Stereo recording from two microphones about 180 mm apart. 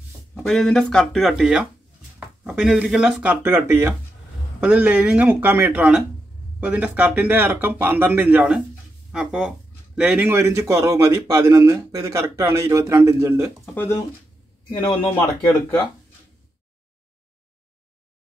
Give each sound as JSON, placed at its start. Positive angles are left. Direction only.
{"t": 0.3, "sound": "a man's voice", "side_deg": 0}
{"t": 13.7, "sound": "speech", "side_deg": 15}